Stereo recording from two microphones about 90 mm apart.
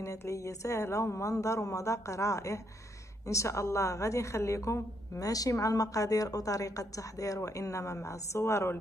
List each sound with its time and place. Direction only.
0.0 s a woman's voice: 35° left (ahead or behind)